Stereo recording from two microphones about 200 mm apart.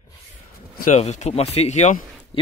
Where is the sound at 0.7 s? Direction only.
40° left (ahead or behind).